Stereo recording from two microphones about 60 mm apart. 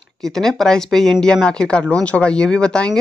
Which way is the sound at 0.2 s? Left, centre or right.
Centre.